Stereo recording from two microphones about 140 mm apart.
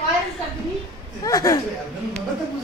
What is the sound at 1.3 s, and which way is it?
Speech, 20° left (ahead or behind).